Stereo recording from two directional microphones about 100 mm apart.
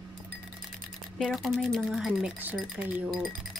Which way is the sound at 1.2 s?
Centre (ahead or behind).